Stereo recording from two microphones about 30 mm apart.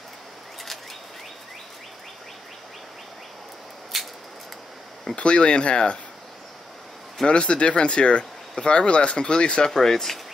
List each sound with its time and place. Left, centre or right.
3.9 s a sound: centre
5.1 s speech: left
7.2 s speech: left
9.8 s speech: centre